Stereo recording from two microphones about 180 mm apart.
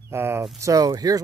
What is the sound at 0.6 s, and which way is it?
Speech, 20° right (ahead or behind).